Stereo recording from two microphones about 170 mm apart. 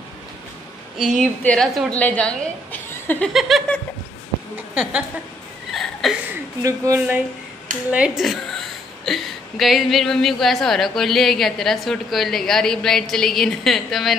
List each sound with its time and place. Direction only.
0.9 s a woman's voice: 5° right (ahead or behind)
5.7 s a sound: centre (ahead or behind)
6.6 s speech: 20° right (ahead or behind)
7.9 s a woman's voice: 5° right (ahead or behind)